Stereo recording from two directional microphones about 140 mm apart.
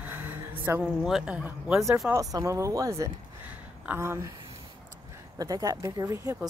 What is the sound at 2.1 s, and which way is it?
A woman's voice, 25° right (ahead or behind).